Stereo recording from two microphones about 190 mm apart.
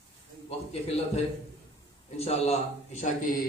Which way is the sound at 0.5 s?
35° left (ahead or behind).